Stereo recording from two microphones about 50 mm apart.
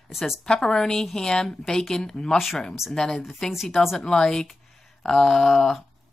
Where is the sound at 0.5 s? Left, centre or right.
Centre.